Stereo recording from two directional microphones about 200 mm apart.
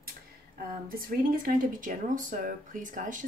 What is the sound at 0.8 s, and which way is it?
Speech, 45° right (ahead or behind).